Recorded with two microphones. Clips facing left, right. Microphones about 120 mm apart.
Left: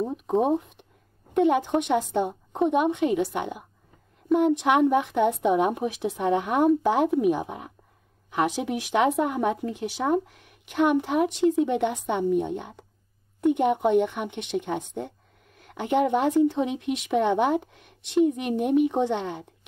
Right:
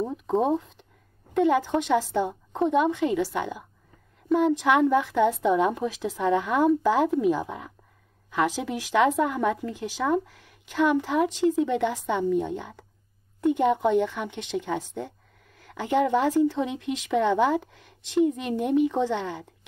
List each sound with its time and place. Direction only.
0.1 s a woman's voice: 15° left (ahead or behind)